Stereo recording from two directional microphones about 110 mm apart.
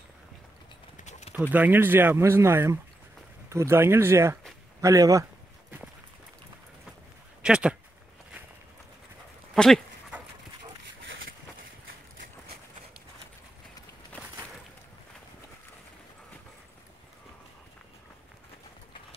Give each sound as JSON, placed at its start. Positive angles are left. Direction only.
{"t": 1.5, "sound": "speech", "side_deg": -15}
{"t": 7.4, "sound": "speech", "side_deg": -10}
{"t": 9.5, "sound": "speech", "side_deg": 0}